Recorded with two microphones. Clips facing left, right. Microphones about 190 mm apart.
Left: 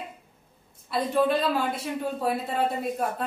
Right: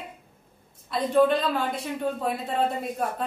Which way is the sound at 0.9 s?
5° left (ahead or behind).